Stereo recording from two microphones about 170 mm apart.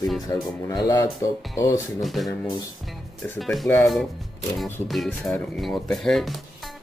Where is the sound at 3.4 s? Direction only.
Centre (ahead or behind).